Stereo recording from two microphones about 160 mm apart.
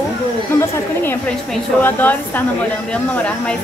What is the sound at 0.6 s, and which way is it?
A woman's voice, 15° left (ahead or behind).